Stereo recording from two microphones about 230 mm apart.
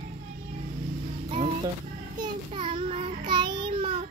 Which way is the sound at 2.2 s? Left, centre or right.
Right.